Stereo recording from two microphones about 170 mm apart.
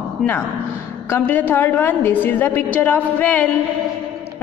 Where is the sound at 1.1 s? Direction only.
10° left (ahead or behind).